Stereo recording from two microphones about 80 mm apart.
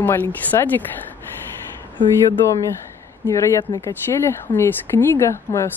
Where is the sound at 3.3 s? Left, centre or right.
Left.